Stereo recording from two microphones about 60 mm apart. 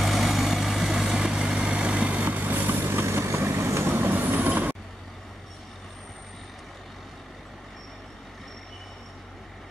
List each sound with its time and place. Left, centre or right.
0.0 s vehicle: centre; by 3.9 s right
3.9 s train: right